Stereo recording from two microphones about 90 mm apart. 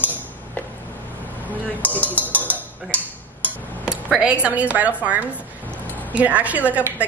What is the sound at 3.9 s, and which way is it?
Speech, 10° right (ahead or behind).